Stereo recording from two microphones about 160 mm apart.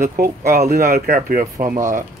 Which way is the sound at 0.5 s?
70° right (ahead or behind).